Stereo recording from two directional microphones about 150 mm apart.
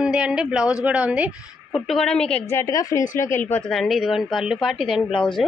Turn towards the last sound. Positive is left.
turn(degrees=35)  # may be behind; listen again after turning